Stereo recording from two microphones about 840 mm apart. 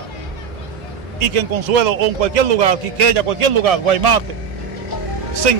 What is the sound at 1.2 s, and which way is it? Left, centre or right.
A man's voice, right.